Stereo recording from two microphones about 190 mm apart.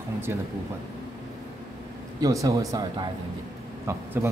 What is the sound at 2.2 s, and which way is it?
A man's voice, 20° right (ahead or behind).